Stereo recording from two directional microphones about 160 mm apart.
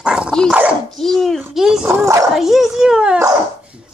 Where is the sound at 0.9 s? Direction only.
Centre (ahead or behind).